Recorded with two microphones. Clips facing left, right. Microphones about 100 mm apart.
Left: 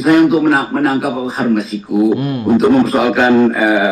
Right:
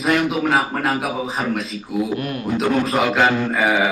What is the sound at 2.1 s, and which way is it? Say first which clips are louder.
Speech: left 8 dB; 25° left (ahead or behind).